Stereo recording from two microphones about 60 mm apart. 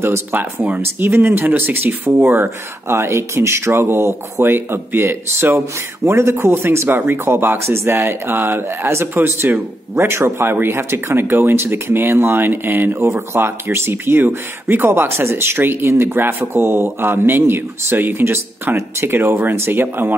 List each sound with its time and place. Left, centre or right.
0.3 s speech: right
1.0 s a man's voice: right